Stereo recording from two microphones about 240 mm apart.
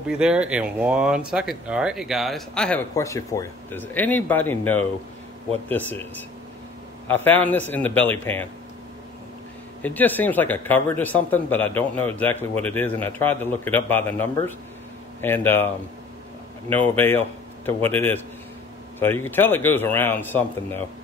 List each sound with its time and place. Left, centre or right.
0.1 s speech: centre
7.1 s speech: centre
9.8 s speech: centre